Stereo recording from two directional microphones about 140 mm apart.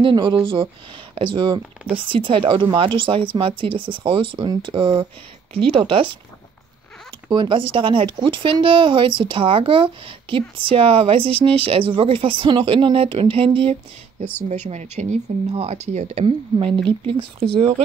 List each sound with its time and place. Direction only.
0.0 s speech: 35° right (ahead or behind)
7.2 s speech: 35° right (ahead or behind)
14.7 s speech: 55° right (ahead or behind)
16.5 s speech: 35° right (ahead or behind)